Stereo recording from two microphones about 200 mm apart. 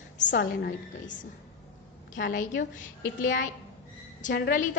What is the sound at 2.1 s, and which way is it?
Speech, 70° left (ahead or behind).